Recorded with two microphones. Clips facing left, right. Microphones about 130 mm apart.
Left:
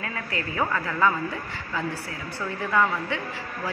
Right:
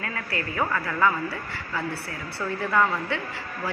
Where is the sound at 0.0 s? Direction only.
20° left (ahead or behind).